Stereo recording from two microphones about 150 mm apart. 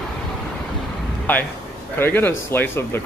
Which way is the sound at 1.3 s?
10° left (ahead or behind).